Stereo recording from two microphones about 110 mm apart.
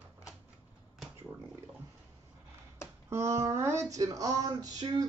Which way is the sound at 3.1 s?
25° right (ahead or behind).